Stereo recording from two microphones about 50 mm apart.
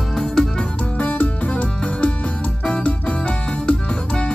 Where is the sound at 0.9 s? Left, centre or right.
Left.